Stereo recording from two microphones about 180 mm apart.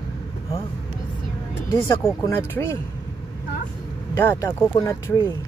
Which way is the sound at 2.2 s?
15° left (ahead or behind).